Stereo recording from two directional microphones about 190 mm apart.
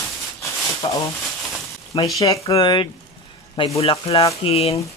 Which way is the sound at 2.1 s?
15° left (ahead or behind).